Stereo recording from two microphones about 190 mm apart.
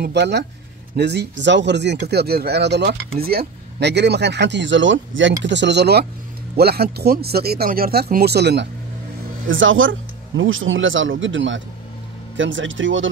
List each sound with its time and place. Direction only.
0.0 s speech: 65° right (ahead or behind)
9.5 s speech: 90° right